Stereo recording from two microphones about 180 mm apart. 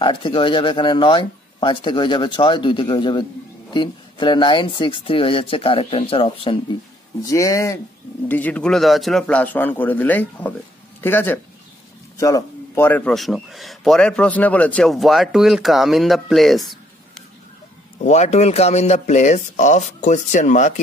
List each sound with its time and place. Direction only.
0.0 s speech: 25° left (ahead or behind)
7.2 s a man's voice: 20° left (ahead or behind); by 16.6 s centre (ahead or behind)
18.0 s speech: 40° left (ahead or behind)